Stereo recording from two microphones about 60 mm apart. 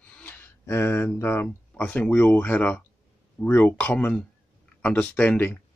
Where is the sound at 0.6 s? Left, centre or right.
Left.